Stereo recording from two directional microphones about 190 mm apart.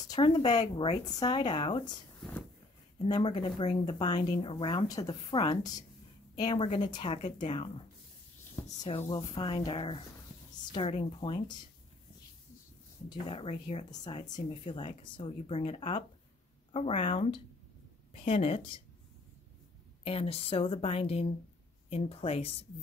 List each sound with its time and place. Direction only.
0.1 s a woman's voice: 25° left (ahead or behind)
3.1 s a woman's voice: 25° left (ahead or behind)
8.8 s a woman's voice: 25° left (ahead or behind)
13.1 s a woman's voice: 30° left (ahead or behind)
20.0 s a woman's voice: 30° left (ahead or behind)